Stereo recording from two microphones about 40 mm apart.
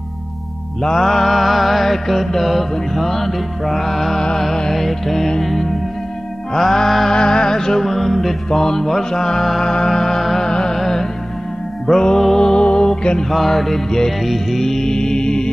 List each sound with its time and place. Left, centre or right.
0.8 s mantra: centre
4.4 s music: centre
7.1 s music: centre
13.2 s music: centre